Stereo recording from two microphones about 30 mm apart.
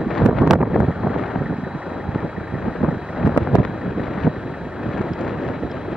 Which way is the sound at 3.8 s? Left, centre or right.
Centre.